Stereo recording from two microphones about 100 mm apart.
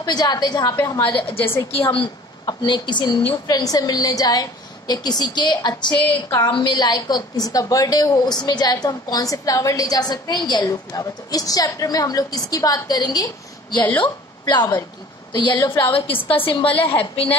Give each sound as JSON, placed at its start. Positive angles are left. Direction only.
{"t": 0.0, "sound": "a woman's voice", "side_deg": 45}
{"t": 1.0, "sound": "a woman's voice", "side_deg": 65}
{"t": 2.4, "sound": "a woman's voice", "side_deg": 50}
{"t": 3.4, "sound": "a woman's voice", "side_deg": 40}
{"t": 15.8, "sound": "a woman's voice", "side_deg": 65}